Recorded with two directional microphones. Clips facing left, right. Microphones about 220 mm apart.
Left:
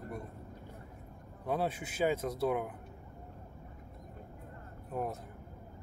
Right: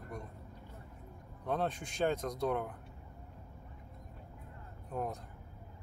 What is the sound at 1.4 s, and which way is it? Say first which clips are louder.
Speech: left 1 dB; 10° left (ahead or behind).